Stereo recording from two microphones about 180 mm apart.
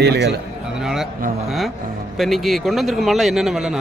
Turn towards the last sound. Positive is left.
turn(degrees=-5)  # may be behind; listen again after turning